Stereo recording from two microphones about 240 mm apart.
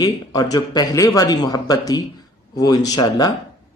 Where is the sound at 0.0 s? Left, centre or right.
Centre.